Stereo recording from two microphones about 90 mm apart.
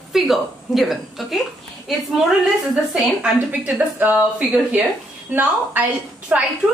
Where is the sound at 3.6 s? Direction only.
20° right (ahead or behind).